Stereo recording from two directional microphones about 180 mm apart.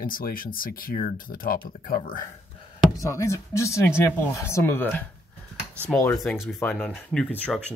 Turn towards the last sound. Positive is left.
turn(degrees=5)  # may be behind; listen again after turning